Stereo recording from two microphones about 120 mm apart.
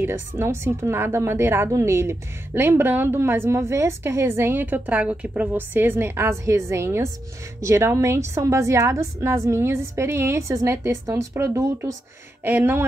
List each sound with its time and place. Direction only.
0.0 s a woman's voice: 20° right (ahead or behind)